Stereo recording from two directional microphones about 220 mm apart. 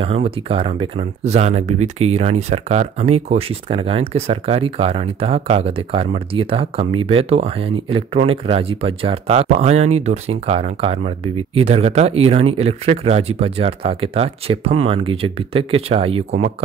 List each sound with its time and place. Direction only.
0.0 s speech: 25° right (ahead or behind)